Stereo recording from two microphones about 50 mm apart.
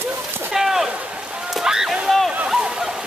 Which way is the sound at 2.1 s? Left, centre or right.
Centre.